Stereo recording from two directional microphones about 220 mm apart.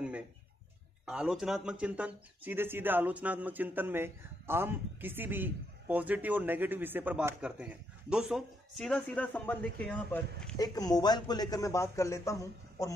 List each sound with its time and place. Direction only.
1.0 s speech: 5° right (ahead or behind)
10.6 s speech: 15° left (ahead or behind)